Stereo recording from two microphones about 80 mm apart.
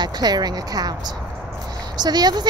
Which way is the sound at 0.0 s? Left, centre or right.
Right.